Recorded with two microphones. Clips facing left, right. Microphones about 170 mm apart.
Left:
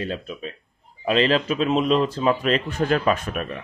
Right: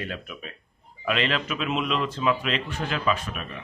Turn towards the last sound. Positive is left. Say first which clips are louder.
# left 5 dB
turn(degrees=50)  # may be behind; listen again after turning